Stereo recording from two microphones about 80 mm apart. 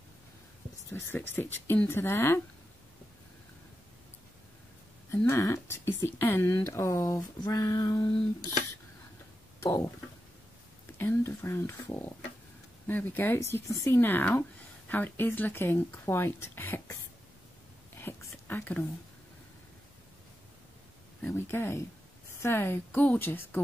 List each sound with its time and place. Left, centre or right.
0.9 s speech: left
5.1 s speech: left
7.4 s a sound: left
9.6 s speech: left
10.9 s speech: left
13.4 s speech: left
17.9 s a sound: left
21.3 s speech: left